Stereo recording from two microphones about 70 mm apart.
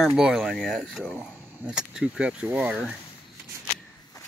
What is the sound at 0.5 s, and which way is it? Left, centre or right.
Speech, centre.